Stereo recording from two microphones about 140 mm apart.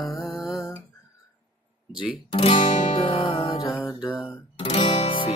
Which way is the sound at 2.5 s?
55° left (ahead or behind).